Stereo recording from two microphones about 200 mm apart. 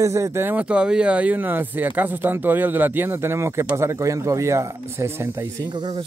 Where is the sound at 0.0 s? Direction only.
15° right (ahead or behind).